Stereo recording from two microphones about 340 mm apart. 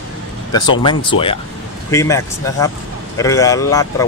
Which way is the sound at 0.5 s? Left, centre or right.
Centre.